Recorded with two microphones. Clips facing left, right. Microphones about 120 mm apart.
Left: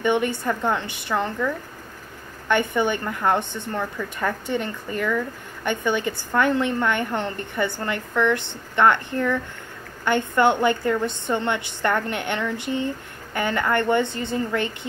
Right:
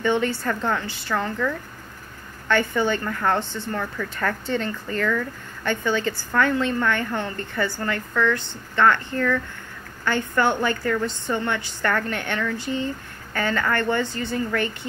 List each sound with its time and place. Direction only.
0.0 s a woman's voice: 15° left (ahead or behind)